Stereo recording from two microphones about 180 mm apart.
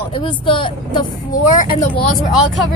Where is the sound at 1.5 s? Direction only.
45° left (ahead or behind).